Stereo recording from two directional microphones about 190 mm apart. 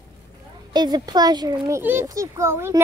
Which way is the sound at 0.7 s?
20° right (ahead or behind).